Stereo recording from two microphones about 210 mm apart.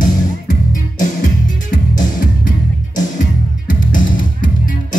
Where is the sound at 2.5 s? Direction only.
40° left (ahead or behind).